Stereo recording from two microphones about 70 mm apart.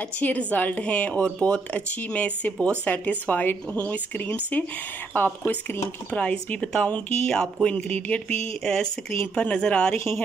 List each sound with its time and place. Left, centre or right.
0.2 s speech: left
6.1 s a woman's voice: centre